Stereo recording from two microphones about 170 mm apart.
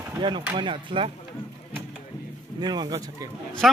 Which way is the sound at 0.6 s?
30° right (ahead or behind).